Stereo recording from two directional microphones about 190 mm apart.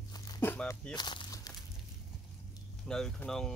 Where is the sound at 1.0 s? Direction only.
25° left (ahead or behind).